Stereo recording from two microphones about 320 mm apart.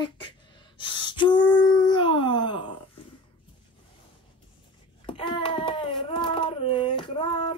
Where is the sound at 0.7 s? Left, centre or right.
Centre.